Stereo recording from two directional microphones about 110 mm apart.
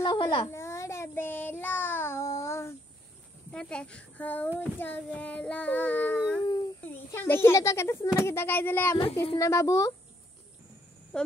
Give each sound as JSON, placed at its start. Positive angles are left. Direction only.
{"t": 0.0, "sound": "a sound", "side_deg": 45}
{"t": 0.5, "sound": "child singing", "side_deg": 25}
{"t": 3.5, "sound": "child singing", "side_deg": 10}
{"t": 7.1, "sound": "a child's voice", "side_deg": 20}
{"t": 9.4, "sound": "a child's voice", "side_deg": 30}
{"t": 11.1, "sound": "speech", "side_deg": 10}